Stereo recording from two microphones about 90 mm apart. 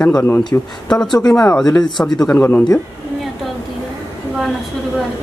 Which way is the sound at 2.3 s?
20° left (ahead or behind).